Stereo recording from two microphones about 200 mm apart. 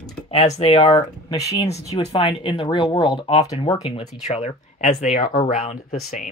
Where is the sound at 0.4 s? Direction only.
30° left (ahead or behind).